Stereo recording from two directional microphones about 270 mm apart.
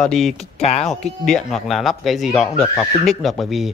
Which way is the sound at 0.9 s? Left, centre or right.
Centre.